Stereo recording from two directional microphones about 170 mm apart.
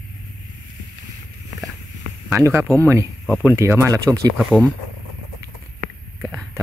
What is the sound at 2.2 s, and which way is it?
Speech, 15° right (ahead or behind).